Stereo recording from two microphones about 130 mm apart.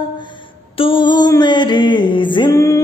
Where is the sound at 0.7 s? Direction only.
40° left (ahead or behind).